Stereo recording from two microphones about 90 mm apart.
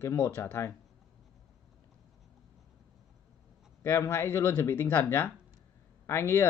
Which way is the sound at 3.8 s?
30° left (ahead or behind).